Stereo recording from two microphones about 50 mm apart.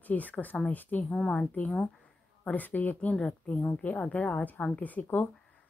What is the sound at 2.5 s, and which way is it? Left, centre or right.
A woman's voice, left.